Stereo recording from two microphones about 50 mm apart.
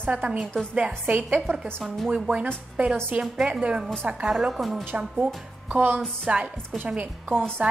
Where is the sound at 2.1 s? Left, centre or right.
Right.